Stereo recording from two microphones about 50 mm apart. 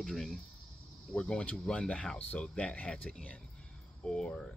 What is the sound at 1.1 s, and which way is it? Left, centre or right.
Speech, left.